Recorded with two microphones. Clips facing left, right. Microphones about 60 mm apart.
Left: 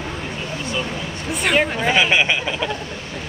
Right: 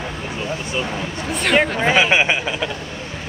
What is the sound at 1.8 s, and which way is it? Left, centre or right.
Speech, right.